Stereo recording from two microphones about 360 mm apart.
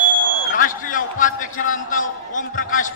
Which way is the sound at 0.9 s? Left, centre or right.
Left.